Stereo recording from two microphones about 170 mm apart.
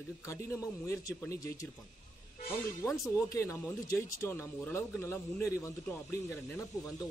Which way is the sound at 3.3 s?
15° left (ahead or behind).